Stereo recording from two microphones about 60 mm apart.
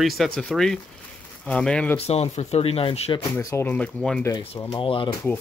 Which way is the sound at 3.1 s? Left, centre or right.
Left.